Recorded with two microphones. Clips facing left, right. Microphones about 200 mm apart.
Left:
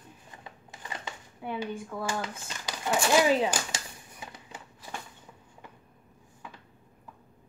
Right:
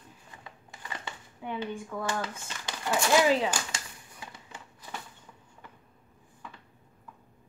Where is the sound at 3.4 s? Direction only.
20° left (ahead or behind).